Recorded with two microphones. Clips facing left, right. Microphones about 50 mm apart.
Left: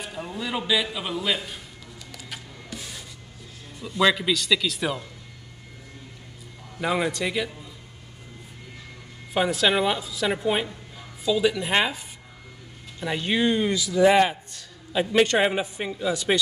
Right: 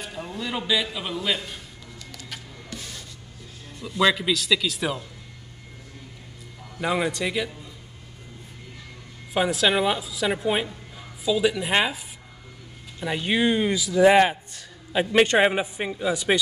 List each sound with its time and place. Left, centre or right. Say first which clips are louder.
0.0 s a man's voice: even; centre
2.1 s music: left 1 dB; centre
3.8 s a man's voice: even; centre
6.8 s a man's voice: even; centre
9.3 s a woman's voice: even; centre
13.0 s a man's voice: right 1 dB; centre